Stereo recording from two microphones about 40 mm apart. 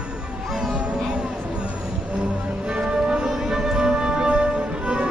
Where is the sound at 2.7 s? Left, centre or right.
Right.